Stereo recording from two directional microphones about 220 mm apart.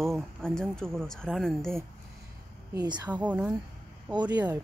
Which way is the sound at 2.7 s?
15° right (ahead or behind).